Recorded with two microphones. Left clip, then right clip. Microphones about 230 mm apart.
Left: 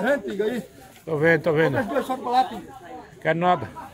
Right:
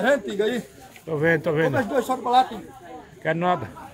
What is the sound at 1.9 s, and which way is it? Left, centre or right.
Speech, centre.